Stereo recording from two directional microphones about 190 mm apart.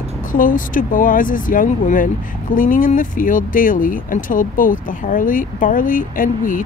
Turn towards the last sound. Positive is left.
turn(degrees=45)  # may be behind; listen again after turning